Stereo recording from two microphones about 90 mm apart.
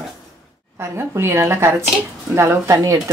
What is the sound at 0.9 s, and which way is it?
Speech, 30° right (ahead or behind).